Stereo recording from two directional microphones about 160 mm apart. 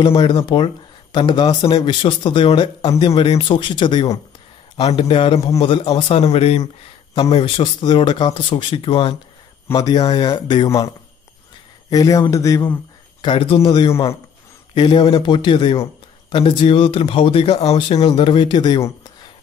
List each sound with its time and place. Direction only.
0.0 s speech: 30° left (ahead or behind)
11.9 s speech: 20° left (ahead or behind)
13.2 s speech: 30° left (ahead or behind)